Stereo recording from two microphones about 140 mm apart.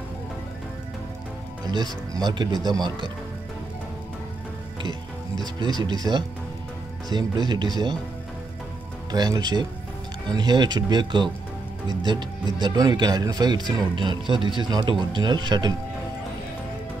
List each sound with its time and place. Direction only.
1.7 s speech: 30° right (ahead or behind)
5.8 s speech: 30° right (ahead or behind)
9.1 s speech: 30° right (ahead or behind)